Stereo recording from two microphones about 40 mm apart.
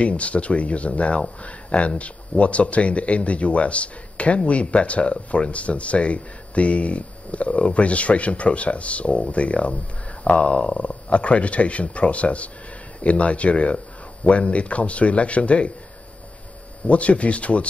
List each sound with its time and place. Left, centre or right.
0.0 s speech: left
16.8 s speech: left